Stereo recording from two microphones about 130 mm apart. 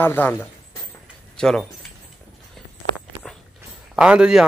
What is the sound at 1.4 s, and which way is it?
Speech, centre (ahead or behind).